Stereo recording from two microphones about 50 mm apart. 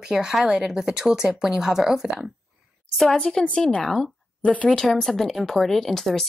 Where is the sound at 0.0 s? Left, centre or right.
Centre.